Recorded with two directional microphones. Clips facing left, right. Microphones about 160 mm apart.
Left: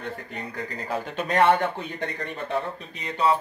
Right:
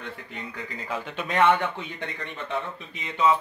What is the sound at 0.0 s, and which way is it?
Speech, 40° left (ahead or behind).